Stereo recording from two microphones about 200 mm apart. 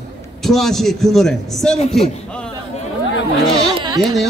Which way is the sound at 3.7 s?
20° right (ahead or behind).